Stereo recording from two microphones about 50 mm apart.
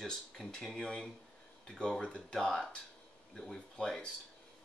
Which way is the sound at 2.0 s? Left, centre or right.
Left.